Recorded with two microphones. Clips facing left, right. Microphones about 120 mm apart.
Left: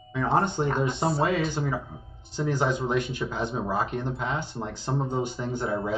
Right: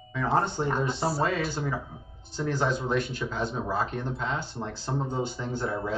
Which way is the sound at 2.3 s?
15° left (ahead or behind).